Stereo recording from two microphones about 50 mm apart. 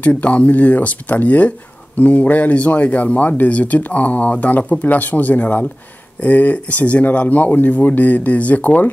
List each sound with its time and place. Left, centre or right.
0.0 s speech: left